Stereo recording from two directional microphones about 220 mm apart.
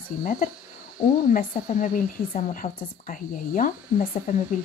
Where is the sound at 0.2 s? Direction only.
40° left (ahead or behind).